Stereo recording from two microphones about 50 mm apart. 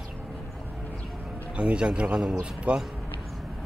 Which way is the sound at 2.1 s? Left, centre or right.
Centre.